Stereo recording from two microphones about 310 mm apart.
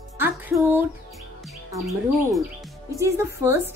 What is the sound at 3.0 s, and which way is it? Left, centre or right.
Speech, centre.